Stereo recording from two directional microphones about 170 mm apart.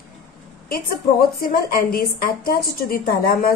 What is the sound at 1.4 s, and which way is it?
A woman's voice, 60° left (ahead or behind).